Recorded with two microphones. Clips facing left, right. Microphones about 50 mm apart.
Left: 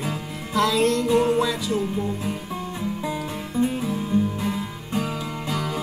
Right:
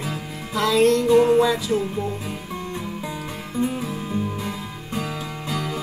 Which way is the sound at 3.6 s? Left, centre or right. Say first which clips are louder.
Left 1 dB; right.